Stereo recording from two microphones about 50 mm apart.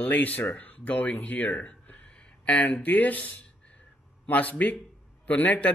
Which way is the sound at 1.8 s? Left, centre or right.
Left.